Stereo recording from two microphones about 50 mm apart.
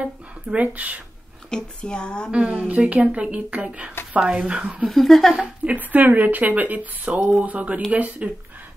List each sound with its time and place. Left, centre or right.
0.0 s speech: right
1.5 s speech: centre
2.7 s speech: right
4.8 s speech: centre
5.3 s a woman's voice: right